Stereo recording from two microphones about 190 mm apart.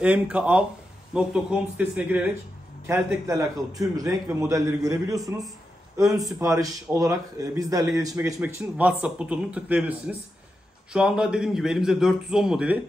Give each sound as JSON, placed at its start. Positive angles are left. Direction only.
{"t": 0.0, "sound": "a man's voice", "side_deg": -5}
{"t": 8.4, "sound": "a man's voice", "side_deg": -5}